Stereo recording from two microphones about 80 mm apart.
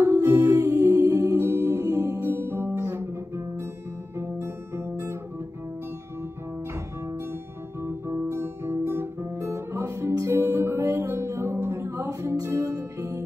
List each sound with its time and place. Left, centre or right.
0.3 s music: right
0.7 s music: right
4.4 s guitar: right
7.8 s guitar: right
11.1 s music: right